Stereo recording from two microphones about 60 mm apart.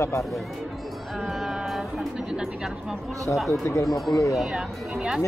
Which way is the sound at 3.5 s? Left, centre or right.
Left.